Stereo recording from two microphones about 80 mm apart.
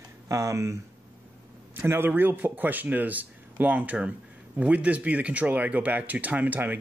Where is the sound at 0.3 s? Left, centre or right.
Right.